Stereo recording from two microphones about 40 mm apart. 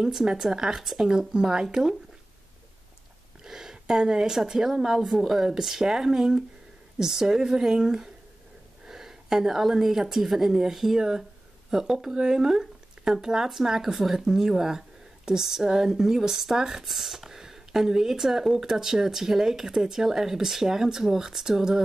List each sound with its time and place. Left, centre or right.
0.0 s speech: centre
1.3 s speech: centre
3.4 s a woman's voice: centre